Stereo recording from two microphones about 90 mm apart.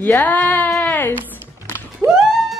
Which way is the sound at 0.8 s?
20° left (ahead or behind).